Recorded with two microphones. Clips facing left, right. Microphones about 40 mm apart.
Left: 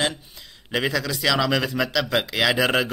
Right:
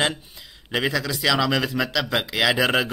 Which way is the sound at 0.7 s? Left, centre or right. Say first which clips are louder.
Even; centre.